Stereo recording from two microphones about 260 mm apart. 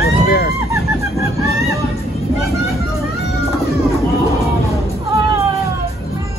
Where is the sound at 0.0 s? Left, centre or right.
Left.